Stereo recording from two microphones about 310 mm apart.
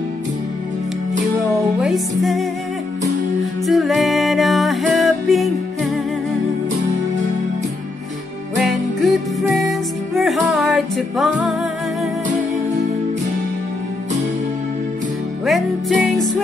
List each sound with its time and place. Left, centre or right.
1.8 s music: centre
3.6 s music: centre
8.5 s music: centre
15.4 s music: centre